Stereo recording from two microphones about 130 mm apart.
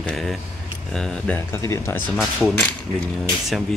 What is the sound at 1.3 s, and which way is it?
Speech, 20° left (ahead or behind).